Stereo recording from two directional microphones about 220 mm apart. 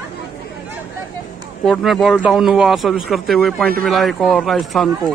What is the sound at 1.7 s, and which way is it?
Speech, centre (ahead or behind).